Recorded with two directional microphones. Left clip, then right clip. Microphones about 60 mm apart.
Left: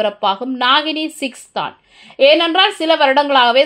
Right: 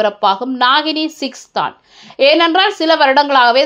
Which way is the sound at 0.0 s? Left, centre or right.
Right.